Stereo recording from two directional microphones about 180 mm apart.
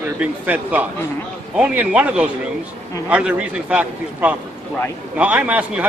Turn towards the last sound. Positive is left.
turn(degrees=-10)  # may be behind; listen again after turning